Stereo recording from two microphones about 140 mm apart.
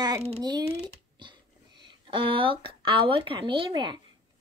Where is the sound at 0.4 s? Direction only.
30° right (ahead or behind).